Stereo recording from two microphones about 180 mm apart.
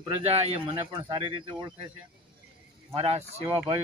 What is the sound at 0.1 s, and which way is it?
Speech, 35° right (ahead or behind).